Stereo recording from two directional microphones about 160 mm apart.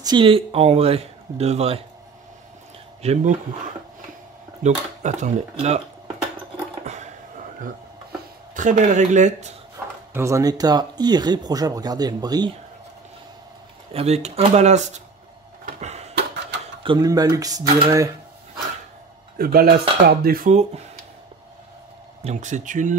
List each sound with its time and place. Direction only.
0.0 s speech: 30° right (ahead or behind)
3.0 s speech: 45° right (ahead or behind)
4.6 s speech: 45° right (ahead or behind)
8.5 s speech: 50° right (ahead or behind)
10.1 s speech: 20° right (ahead or behind)
13.9 s speech: 40° right (ahead or behind)
15.6 s a sound: 45° right (ahead or behind)
16.8 s speech: 25° right (ahead or behind)
19.3 s speech: 65° right (ahead or behind); by 20.8 s 50° right (ahead or behind)
22.2 s speech: 50° right (ahead or behind)